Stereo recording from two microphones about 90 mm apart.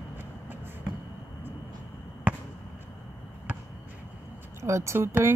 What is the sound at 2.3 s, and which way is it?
Basketball bounce, 20° right (ahead or behind).